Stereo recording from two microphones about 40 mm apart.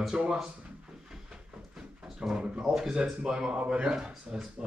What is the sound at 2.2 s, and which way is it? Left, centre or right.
Speech, right.